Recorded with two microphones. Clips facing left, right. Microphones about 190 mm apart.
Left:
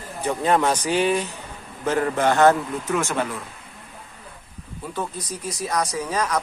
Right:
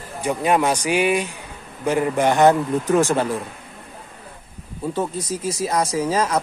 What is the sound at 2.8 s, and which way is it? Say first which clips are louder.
Speech: right 7 dB; 35° right (ahead or behind).